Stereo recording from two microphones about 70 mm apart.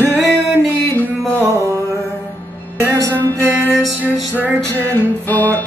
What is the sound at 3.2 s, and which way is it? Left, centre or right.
Music, left.